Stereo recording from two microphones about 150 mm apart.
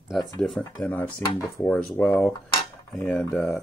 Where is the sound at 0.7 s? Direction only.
15° left (ahead or behind).